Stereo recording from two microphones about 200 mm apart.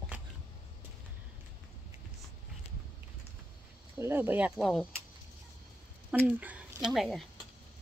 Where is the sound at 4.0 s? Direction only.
10° right (ahead or behind).